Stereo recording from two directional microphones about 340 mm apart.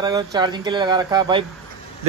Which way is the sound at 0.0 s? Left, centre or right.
Centre.